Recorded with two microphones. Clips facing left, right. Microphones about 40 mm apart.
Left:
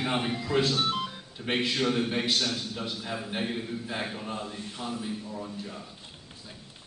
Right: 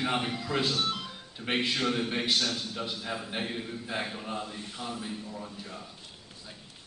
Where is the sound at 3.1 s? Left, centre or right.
Centre.